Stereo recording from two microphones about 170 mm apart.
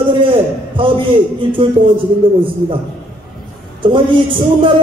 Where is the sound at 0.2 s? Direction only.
30° right (ahead or behind).